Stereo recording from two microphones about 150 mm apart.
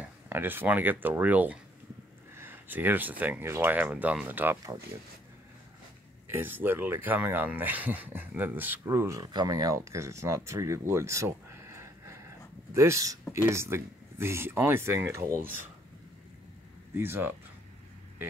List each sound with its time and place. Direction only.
0.0 s speech: 15° right (ahead or behind)
6.2 s speech: 15° right (ahead or behind)
12.7 s speech: 20° right (ahead or behind)
16.9 s speech: 15° right (ahead or behind)